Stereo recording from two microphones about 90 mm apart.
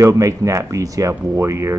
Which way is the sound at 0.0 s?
35° right (ahead or behind).